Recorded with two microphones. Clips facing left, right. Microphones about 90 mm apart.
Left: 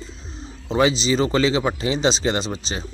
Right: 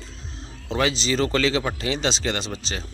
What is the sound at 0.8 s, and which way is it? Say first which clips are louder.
Speech: left 4 dB; 15° left (ahead or behind).